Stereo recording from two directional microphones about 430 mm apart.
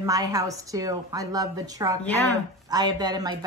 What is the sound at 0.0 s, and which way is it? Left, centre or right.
A woman's voice, centre.